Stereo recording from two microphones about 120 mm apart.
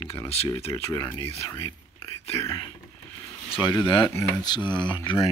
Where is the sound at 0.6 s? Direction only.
55° left (ahead or behind).